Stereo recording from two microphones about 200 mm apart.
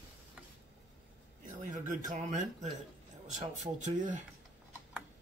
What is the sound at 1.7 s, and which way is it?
Speech, 40° right (ahead or behind).